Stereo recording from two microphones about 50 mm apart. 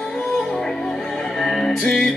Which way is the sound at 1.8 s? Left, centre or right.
Centre.